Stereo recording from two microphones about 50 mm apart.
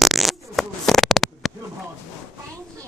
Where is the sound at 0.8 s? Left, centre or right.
Centre.